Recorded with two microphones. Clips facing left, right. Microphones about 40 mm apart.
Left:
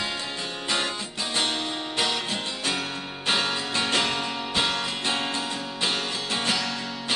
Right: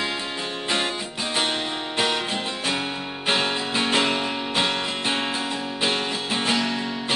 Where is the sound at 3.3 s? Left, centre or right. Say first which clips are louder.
Right 2 dB; centre.